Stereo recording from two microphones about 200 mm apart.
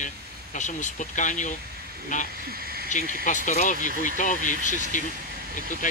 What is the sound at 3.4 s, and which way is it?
A man's voice, 40° left (ahead or behind).